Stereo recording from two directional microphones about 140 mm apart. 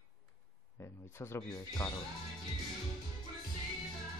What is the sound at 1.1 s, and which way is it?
Speech, 15° left (ahead or behind).